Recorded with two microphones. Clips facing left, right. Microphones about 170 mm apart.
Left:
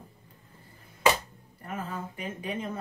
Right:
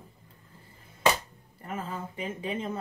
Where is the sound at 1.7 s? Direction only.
25° right (ahead or behind).